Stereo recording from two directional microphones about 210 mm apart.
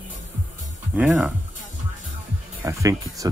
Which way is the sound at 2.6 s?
15° right (ahead or behind).